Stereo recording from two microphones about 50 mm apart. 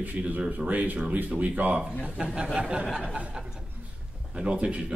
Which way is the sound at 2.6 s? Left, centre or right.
Right.